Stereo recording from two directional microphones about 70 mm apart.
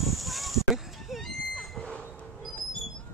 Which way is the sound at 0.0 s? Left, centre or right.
Centre.